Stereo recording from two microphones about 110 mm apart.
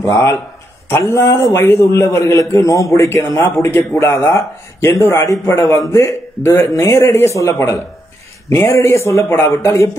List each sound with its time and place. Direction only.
0.1 s a man's voice: 25° left (ahead or behind)